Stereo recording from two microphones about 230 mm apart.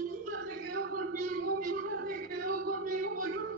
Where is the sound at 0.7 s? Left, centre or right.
Right.